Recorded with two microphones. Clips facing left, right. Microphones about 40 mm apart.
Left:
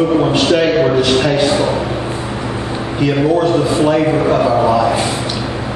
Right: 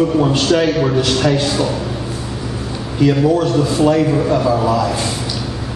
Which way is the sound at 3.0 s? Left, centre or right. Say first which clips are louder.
Even; left.